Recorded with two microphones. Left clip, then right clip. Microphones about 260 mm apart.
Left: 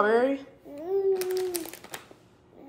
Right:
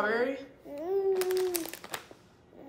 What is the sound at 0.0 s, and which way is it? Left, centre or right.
Babbling, centre.